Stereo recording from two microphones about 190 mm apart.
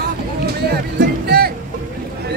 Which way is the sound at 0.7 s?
55° right (ahead or behind).